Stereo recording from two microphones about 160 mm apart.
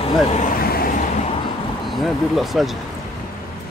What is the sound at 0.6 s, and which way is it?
Vehicle, 70° left (ahead or behind).